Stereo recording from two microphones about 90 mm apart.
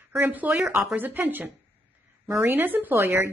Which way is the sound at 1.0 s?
20° right (ahead or behind).